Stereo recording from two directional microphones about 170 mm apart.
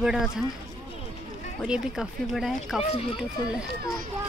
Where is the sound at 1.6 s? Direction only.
5° right (ahead or behind).